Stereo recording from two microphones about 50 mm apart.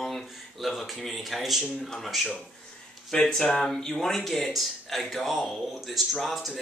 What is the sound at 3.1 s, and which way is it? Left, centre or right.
Speech, centre.